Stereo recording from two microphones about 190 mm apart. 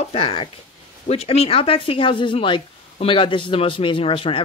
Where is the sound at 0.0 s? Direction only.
30° left (ahead or behind).